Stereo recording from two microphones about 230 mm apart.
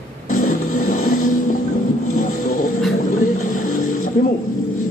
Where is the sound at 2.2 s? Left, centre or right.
Left.